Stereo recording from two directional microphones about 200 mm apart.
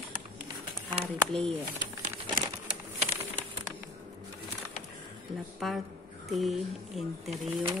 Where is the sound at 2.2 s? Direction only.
25° right (ahead or behind).